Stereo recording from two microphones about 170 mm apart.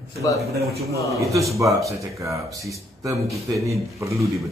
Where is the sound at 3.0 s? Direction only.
20° right (ahead or behind).